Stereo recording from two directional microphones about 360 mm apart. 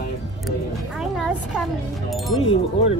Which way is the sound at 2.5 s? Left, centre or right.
Centre.